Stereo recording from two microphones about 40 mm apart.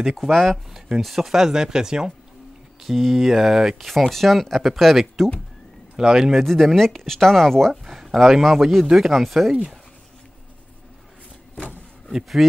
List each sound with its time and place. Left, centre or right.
0.2 s speech: centre
2.8 s speech: centre
4.1 s speech: centre
5.9 s speech: centre
6.4 s speech: centre
7.8 s speech: centre
9.5 s speech: centre
12.4 s speech: centre